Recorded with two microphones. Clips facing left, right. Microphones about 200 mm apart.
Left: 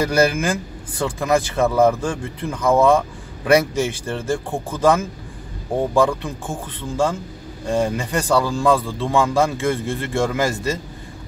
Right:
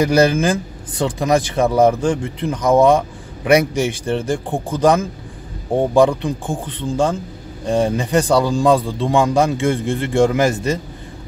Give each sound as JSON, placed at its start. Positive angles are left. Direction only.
{"t": 0.0, "sound": "a man's voice", "side_deg": -20}